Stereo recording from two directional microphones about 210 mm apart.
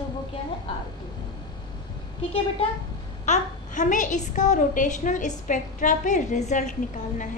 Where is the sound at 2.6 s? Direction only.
25° left (ahead or behind).